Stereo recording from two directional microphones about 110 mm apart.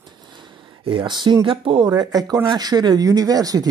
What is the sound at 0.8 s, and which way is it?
Speech, 45° right (ahead or behind).